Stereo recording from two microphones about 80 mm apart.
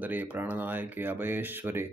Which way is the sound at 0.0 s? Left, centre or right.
Right.